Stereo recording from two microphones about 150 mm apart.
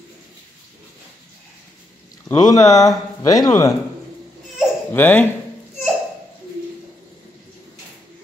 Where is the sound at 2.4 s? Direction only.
25° left (ahead or behind).